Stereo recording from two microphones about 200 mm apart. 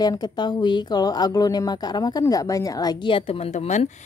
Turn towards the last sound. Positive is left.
turn(degrees=35)  # may be behind; listen again after turning